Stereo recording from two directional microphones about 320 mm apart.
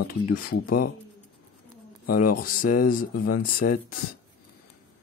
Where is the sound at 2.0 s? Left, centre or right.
Left.